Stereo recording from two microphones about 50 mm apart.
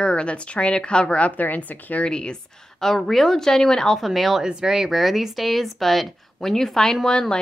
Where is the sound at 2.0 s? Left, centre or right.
Centre.